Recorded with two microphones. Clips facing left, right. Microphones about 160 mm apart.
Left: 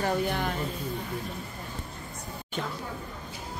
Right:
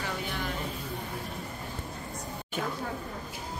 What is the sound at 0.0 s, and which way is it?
Music, 45° left (ahead or behind).